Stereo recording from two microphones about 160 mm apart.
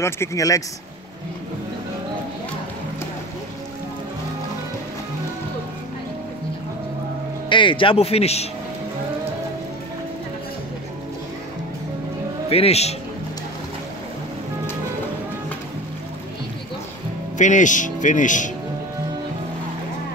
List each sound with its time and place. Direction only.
0.0 s speech: 20° left (ahead or behind)
7.4 s a man's voice: 30° left (ahead or behind)
12.4 s a man's voice: 40° left (ahead or behind)
17.4 s speech: 50° left (ahead or behind)